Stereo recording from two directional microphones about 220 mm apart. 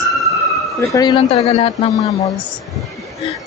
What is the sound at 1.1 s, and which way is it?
Speech, 30° left (ahead or behind).